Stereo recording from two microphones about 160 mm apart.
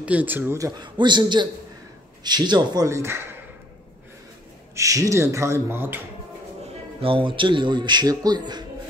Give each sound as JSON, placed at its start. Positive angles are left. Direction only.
{"t": 0.0, "sound": "a man's voice", "side_deg": -10}
{"t": 4.7, "sound": "a man's voice", "side_deg": -20}
{"t": 7.0, "sound": "a man's voice", "side_deg": -35}